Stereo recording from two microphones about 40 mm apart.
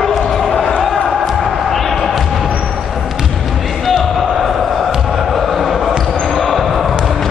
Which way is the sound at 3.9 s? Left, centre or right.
Centre.